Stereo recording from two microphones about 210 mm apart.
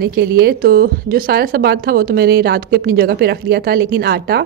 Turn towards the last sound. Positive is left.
turn(degrees=-50)  # may be behind; listen again after turning